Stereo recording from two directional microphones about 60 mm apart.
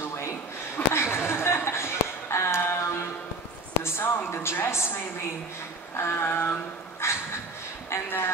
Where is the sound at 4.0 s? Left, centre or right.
Left.